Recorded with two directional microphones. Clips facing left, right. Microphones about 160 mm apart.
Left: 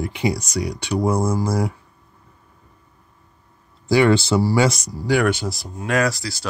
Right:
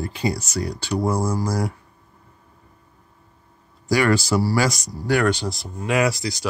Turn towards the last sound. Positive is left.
turn(degrees=-20)  # may be behind; listen again after turning